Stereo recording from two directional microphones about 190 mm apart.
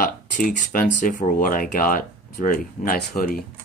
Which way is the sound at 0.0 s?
45° left (ahead or behind).